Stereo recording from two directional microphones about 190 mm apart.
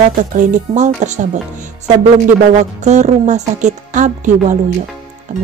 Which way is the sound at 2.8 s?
40° right (ahead or behind).